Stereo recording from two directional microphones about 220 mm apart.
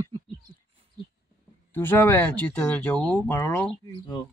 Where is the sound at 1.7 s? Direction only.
10° left (ahead or behind).